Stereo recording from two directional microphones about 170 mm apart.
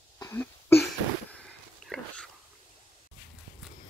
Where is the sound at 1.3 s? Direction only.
5° left (ahead or behind).